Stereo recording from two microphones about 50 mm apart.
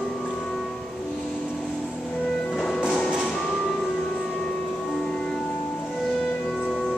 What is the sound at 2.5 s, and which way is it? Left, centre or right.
Music, centre.